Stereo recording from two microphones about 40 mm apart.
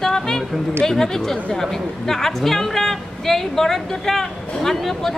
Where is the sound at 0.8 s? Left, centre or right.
Centre.